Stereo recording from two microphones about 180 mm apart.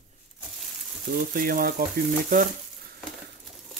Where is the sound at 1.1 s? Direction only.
55° right (ahead or behind).